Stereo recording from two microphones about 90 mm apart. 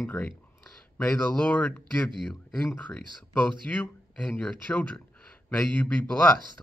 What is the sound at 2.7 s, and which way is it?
Speech, 15° left (ahead or behind).